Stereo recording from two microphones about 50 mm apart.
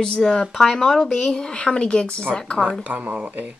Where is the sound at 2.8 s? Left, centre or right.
Right.